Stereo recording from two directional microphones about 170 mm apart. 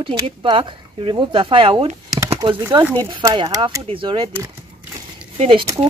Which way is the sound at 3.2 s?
20° right (ahead or behind).